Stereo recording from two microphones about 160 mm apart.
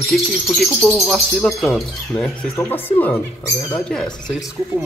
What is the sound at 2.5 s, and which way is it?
Speech, 10° left (ahead or behind).